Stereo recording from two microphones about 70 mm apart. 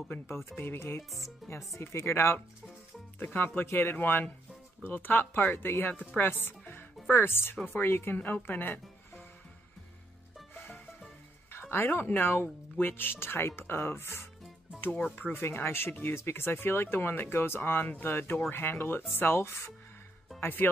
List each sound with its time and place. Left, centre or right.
0.1 s speech: left
1.4 s speech: centre
1.8 s speech: left
10.5 s music: left
11.7 s speech: left